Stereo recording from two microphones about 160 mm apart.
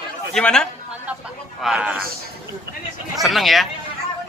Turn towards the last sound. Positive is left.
turn(degrees=0)  # may be behind; listen again after turning